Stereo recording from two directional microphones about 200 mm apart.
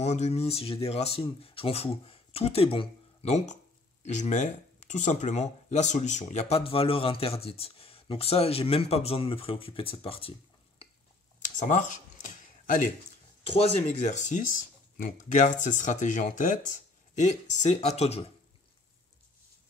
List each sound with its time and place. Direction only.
0.0 s speech: 35° left (ahead or behind)
11.3 s a sound: 35° left (ahead or behind)
13.5 s speech: 30° left (ahead or behind)